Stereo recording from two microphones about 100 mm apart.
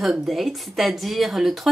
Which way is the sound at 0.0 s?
Centre (ahead or behind).